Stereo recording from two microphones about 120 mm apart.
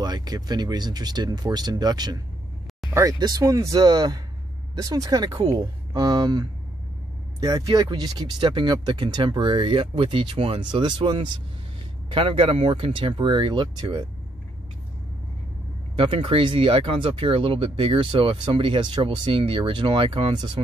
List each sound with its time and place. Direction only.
0.0 s speech: 35° right (ahead or behind)
2.9 s speech: 25° right (ahead or behind); by 14.0 s 40° right (ahead or behind)
16.0 s speech: 50° right (ahead or behind)